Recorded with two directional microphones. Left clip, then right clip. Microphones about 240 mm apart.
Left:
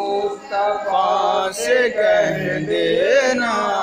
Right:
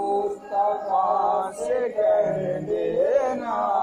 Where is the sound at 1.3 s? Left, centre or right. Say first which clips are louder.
Left 6 dB; left.